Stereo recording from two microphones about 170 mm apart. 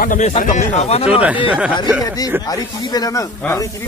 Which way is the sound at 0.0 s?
50° left (ahead or behind).